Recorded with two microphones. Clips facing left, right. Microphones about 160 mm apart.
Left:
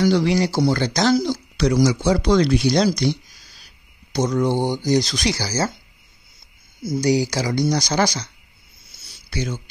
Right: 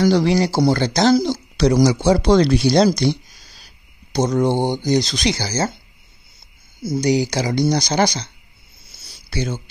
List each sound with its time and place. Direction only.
0.0 s speech: 35° right (ahead or behind)
7.0 s speech: 20° right (ahead or behind)
9.0 s a sound: 30° right (ahead or behind)